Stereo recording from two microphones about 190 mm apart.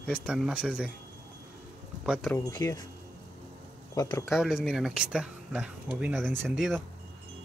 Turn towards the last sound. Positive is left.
turn(degrees=0)  # may be behind; listen again after turning